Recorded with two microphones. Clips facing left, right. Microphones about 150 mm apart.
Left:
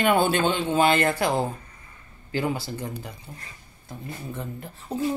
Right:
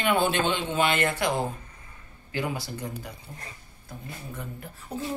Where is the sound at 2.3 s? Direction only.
30° left (ahead or behind).